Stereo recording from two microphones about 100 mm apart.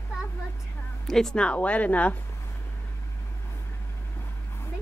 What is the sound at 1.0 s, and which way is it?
Speech, 5° left (ahead or behind).